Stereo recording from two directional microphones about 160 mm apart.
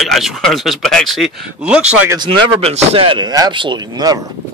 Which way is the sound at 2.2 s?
35° right (ahead or behind).